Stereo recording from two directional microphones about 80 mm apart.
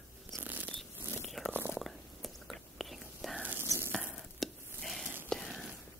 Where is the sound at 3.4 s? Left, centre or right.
Right.